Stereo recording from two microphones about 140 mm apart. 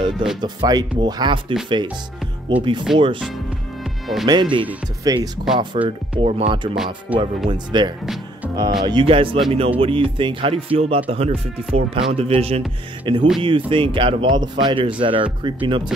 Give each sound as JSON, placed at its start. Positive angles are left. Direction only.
{"t": 0.1, "sound": "speech", "side_deg": 0}
{"t": 0.4, "sound": "speech", "side_deg": -30}
{"t": 2.9, "sound": "speech", "side_deg": 0}
{"t": 4.3, "sound": "speech", "side_deg": -35}
{"t": 5.9, "sound": "speech", "side_deg": -45}
{"t": 7.1, "sound": "speech", "side_deg": -10}
{"t": 7.4, "sound": "speech", "side_deg": -35}